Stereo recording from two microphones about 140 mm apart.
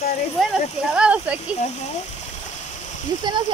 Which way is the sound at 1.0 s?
10° right (ahead or behind).